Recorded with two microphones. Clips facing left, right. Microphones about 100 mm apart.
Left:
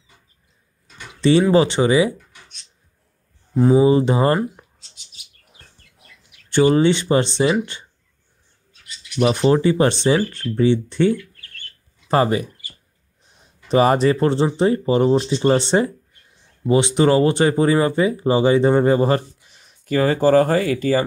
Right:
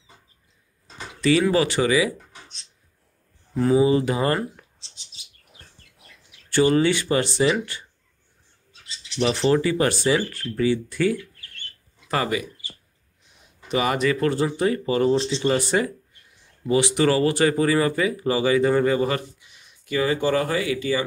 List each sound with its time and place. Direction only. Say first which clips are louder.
0.8 s a sound: right 2 dB; 35° right (ahead or behind)
1.2 s speech: left 5 dB; 30° left (ahead or behind)
2.1 s a sound: right 1 dB; 30° right (ahead or behind)
3.5 s speech: left 4 dB; 25° left (ahead or behind)
4.7 s bird: even; 30° right (ahead or behind)
6.5 s speech: left 4 dB; 20° left (ahead or behind)
9.4 s speech: left 4 dB; 25° left (ahead or behind)
11.1 s chirp: even; 25° right (ahead or behind)
12.1 s speech: left 7 dB; 35° left (ahead or behind)
13.7 s speech: left 7 dB; 35° left (ahead or behind)